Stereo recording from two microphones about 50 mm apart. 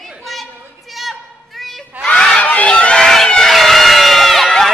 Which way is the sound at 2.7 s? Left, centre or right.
Centre.